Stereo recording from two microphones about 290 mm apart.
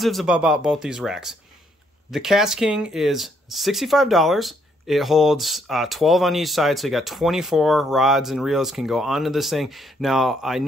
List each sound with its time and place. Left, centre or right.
0.0 s speech: centre